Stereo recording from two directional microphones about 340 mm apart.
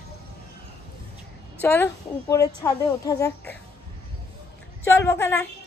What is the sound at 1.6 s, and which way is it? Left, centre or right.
A woman's voice, centre.